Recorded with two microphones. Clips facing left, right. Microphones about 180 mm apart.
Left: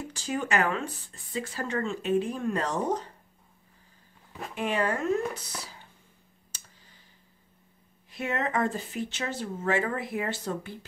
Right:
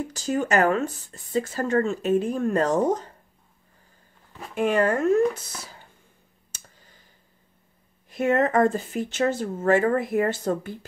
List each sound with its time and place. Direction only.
0.1 s speech: 40° right (ahead or behind)
4.6 s speech: 50° right (ahead or behind)
6.5 s clicking: 50° right (ahead or behind)
8.1 s speech: 50° right (ahead or behind)